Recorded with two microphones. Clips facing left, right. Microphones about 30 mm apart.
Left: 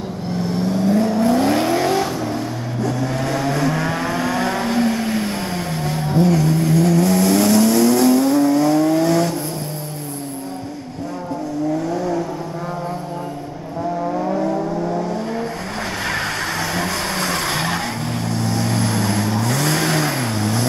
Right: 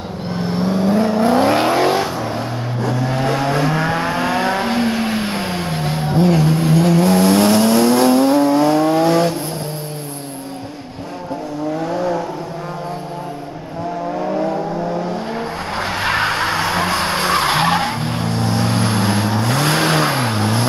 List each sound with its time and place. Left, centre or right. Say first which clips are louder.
0.3 s vehicle: right 2 dB; right
11.7 s vehicle: right 4 dB; right
15.7 s vehicle: right 6 dB; right